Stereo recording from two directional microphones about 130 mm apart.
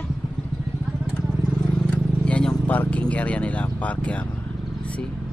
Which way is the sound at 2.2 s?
10° left (ahead or behind).